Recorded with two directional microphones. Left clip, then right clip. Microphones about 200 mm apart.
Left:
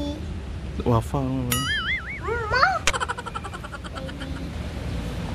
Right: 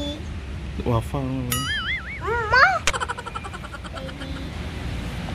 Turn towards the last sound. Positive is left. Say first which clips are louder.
# even
turn(degrees=0)  # may be behind; listen again after turning